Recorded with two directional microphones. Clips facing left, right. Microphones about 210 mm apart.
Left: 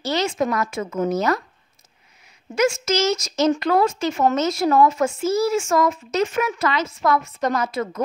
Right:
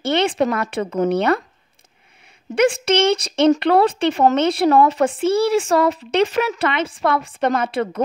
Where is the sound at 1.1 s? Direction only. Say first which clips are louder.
Right 3 dB; 60° right (ahead or behind).